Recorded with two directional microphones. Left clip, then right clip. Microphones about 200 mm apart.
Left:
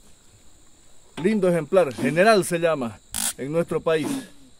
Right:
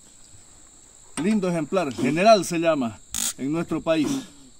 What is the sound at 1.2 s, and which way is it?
Cricket, 30° left (ahead or behind).